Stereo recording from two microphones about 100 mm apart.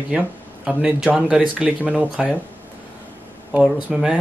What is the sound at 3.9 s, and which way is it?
Speech, 10° right (ahead or behind).